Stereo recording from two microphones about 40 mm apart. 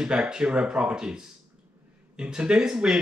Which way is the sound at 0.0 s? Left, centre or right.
Centre.